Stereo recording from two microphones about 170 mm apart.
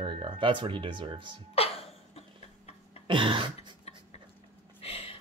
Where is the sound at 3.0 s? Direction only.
30° right (ahead or behind).